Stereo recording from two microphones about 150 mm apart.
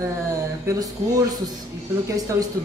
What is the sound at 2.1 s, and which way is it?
Speech, 25° right (ahead or behind).